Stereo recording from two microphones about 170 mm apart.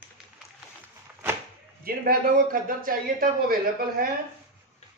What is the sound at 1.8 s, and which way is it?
Speech, 60° right (ahead or behind).